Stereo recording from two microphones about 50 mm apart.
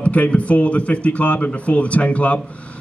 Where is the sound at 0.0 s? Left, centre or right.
Left.